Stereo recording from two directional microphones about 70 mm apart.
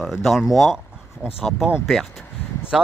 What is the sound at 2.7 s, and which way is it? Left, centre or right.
Speech, centre.